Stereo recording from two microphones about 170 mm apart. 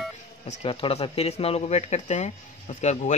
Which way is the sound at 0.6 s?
35° left (ahead or behind).